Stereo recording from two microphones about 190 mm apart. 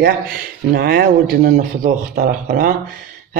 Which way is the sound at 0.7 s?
50° right (ahead or behind).